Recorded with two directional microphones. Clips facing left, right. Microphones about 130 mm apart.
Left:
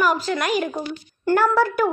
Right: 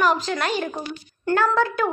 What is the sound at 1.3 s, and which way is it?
Speech, 10° left (ahead or behind).